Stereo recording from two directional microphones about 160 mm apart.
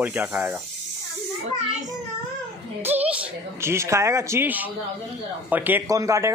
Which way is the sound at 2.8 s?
10° right (ahead or behind).